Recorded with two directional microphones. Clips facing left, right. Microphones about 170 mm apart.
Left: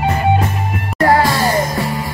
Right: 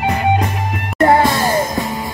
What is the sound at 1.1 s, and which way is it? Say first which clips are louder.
Music: left 1 dB; 20° right (ahead or behind).